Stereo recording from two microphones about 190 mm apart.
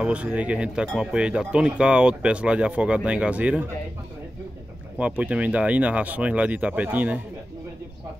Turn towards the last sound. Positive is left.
turn(degrees=-10)  # may be behind; listen again after turning